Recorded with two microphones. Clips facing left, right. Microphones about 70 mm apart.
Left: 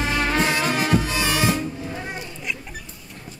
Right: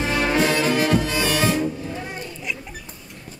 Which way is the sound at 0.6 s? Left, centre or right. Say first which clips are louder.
Right 2 dB; left.